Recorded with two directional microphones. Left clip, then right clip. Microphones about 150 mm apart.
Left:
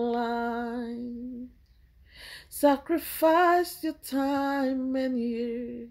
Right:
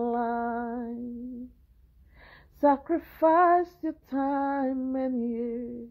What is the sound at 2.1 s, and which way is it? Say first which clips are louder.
Female singing: left 3 dB; 15° left (ahead or behind).